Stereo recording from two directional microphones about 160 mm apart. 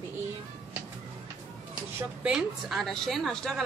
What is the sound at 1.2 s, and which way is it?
A woman's voice, 10° right (ahead or behind).